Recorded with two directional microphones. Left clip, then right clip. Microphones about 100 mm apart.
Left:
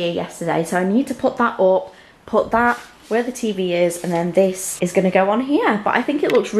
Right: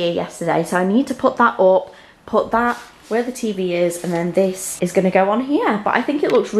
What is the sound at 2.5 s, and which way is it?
A woman's voice, 15° left (ahead or behind).